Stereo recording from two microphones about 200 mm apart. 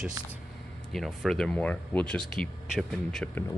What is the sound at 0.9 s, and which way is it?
Speech, centre (ahead or behind).